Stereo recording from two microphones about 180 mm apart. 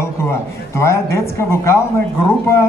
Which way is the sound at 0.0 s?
15° left (ahead or behind).